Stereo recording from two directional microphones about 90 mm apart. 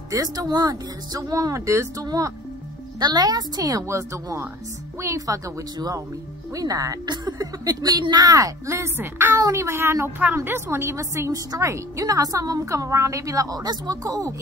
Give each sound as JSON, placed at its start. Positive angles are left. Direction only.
{"t": 0.1, "sound": "a woman's voice", "side_deg": -40}
{"t": 3.0, "sound": "a woman's voice", "side_deg": -50}